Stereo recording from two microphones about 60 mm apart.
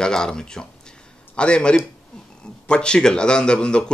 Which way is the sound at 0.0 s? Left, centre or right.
Centre.